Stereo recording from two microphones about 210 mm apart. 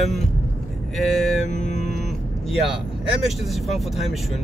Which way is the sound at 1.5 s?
35° left (ahead or behind).